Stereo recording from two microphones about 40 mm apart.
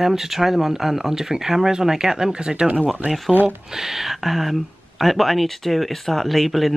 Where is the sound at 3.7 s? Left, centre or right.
Centre.